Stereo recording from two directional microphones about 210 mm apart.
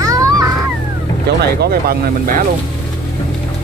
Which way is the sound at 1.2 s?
50° right (ahead or behind).